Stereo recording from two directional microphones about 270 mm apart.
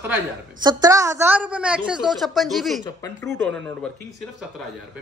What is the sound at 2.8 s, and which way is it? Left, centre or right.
Speech, centre.